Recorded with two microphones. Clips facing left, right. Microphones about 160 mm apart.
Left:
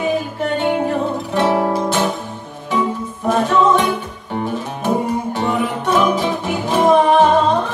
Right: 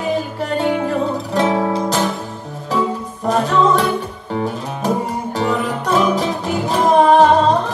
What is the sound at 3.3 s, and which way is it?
Music, 35° right (ahead or behind).